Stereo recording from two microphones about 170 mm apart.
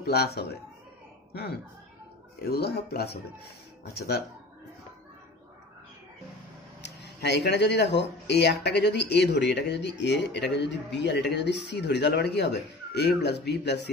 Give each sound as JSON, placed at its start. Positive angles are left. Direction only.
{"t": 0.0, "sound": "speech", "side_deg": 70}
{"t": 6.8, "sound": "speech", "side_deg": 90}
{"t": 13.5, "sound": "speech", "side_deg": 90}